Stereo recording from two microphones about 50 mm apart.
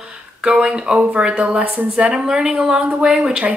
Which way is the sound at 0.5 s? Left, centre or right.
Centre.